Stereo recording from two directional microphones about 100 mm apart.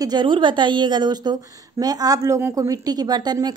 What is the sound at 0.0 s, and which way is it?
A woman's voice, 50° right (ahead or behind).